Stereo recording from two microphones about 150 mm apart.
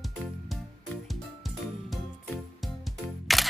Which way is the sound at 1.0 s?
Centre (ahead or behind).